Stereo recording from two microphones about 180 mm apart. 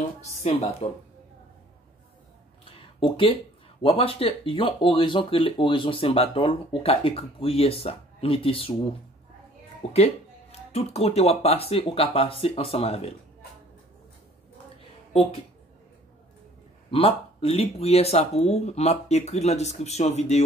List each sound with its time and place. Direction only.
0.2 s speech: 35° left (ahead or behind)
3.0 s speech: 30° left (ahead or behind)
9.8 s speech: 30° left (ahead or behind)
16.9 s speech: 30° left (ahead or behind)